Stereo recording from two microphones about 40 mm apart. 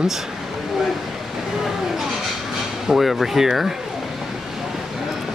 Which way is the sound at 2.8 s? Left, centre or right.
Centre.